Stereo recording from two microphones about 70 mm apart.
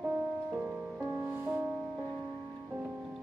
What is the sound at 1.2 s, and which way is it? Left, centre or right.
Music, right.